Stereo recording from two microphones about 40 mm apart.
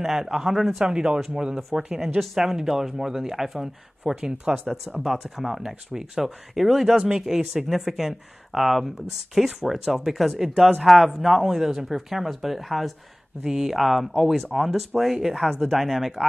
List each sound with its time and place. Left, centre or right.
0.0 s speech: centre
0.7 s speech: centre
2.1 s speech: centre
5.0 s speech: centre
13.4 s speech: centre